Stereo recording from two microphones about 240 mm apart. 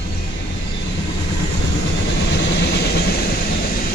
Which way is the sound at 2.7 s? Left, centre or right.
Left.